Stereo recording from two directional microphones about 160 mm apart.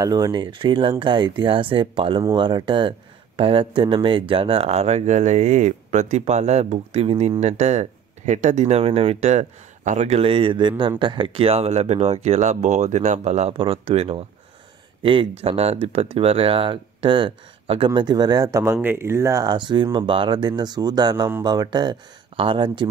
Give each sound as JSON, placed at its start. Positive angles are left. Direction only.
{"t": 0.0, "sound": "speech", "side_deg": -25}